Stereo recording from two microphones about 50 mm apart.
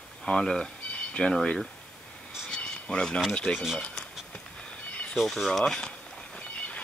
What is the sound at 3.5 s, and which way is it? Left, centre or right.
Speech, centre.